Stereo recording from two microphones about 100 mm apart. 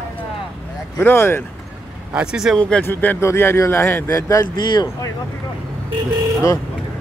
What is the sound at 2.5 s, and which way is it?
A man's voice, 10° left (ahead or behind).